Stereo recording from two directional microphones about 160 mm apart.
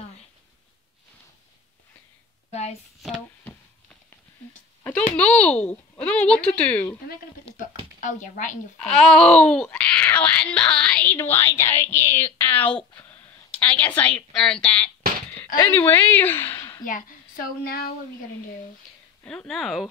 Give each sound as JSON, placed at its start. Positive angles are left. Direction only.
{"t": 5.1, "sound": "speech", "side_deg": 10}
{"t": 7.5, "sound": "a sound", "side_deg": 35}
{"t": 8.0, "sound": "a woman's voice", "side_deg": 50}
{"t": 8.9, "sound": "speech", "side_deg": 5}
{"t": 12.9, "sound": "a sound", "side_deg": 10}
{"t": 13.6, "sound": "a woman's voice", "side_deg": 10}
{"t": 17.6, "sound": "speech", "side_deg": 70}
{"t": 19.2, "sound": "speech", "side_deg": 5}